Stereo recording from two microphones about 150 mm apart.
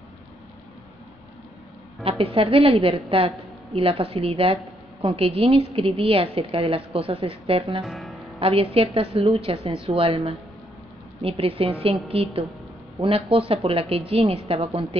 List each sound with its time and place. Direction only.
2.0 s a woman's voice: 40° right (ahead or behind)
7.8 s music: centre (ahead or behind)
8.4 s a woman's voice: 40° right (ahead or behind)